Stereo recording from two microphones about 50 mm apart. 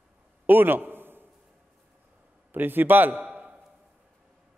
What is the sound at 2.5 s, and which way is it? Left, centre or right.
Speech, right.